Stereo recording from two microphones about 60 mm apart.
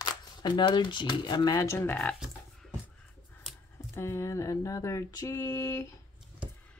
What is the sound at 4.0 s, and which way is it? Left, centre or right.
Mantra, left.